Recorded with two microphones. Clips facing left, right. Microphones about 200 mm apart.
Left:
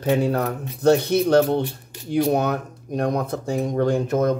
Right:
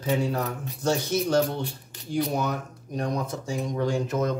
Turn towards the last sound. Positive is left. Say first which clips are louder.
# left 6 dB
turn(degrees=55)  # may be behind; listen again after turning